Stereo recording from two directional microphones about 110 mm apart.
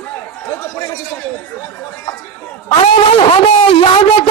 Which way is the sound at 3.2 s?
60° left (ahead or behind).